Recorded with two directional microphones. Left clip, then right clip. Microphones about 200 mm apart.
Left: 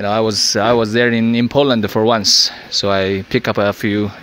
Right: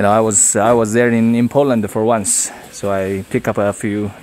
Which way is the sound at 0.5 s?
5° right (ahead or behind).